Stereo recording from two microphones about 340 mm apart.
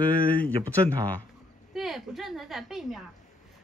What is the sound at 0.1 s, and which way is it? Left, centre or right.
A woman's voice, centre.